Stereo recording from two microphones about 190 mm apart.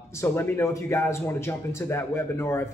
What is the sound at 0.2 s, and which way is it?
Speech, 15° left (ahead or behind).